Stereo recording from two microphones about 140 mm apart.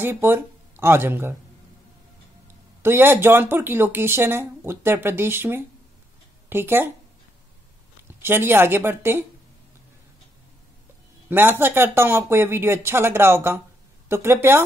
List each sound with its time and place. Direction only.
0.0 s speech: 15° right (ahead or behind)
2.8 s speech: 15° right (ahead or behind)
8.2 s speech: 15° right (ahead or behind)
11.2 s speech: 15° right (ahead or behind)